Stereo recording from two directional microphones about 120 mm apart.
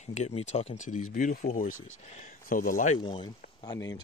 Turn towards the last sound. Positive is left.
turn(degrees=35)  # may be behind; listen again after turning